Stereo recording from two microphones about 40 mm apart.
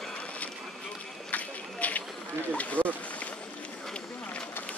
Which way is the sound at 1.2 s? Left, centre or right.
Left.